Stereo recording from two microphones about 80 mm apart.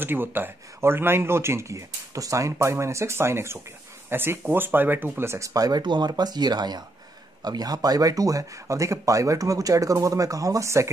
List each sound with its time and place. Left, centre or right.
0.0 s speech: right